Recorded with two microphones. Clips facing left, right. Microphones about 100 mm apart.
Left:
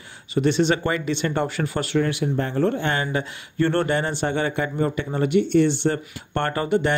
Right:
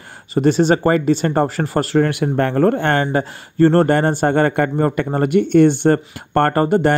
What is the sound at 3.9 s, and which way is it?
Speech, 50° right (ahead or behind).